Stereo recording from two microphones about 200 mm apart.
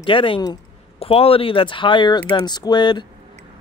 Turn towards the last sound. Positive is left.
turn(degrees=20)  # may be behind; listen again after turning